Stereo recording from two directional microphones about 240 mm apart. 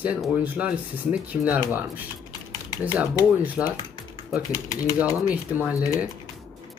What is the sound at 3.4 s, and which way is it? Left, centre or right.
Speech, centre.